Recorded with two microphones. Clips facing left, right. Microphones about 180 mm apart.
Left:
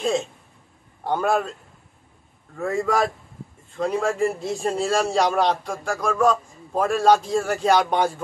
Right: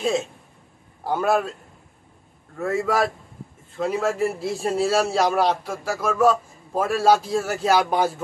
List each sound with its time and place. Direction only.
0.0 s a man's voice: 5° right (ahead or behind)
2.5 s a man's voice: centre (ahead or behind)